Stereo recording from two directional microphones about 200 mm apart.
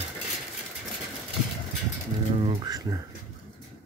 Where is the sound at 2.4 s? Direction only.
20° right (ahead or behind).